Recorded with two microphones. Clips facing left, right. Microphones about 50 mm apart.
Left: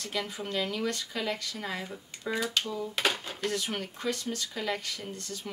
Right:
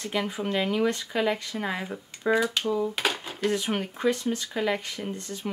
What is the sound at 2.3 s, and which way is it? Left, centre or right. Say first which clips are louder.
Speech: right 6 dB; centre.